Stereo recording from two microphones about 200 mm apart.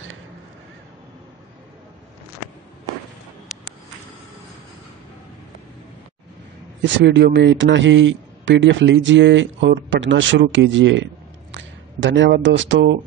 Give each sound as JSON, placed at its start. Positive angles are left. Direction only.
{"t": 6.8, "sound": "a man's voice", "side_deg": -65}